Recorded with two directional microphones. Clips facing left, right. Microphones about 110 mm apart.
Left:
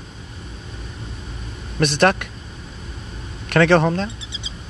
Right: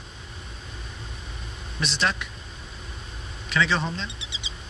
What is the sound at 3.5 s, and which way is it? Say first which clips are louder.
Speech: left 10 dB; 60° left (ahead or behind).